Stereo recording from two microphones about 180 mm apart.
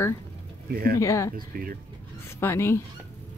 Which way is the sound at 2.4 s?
15° left (ahead or behind).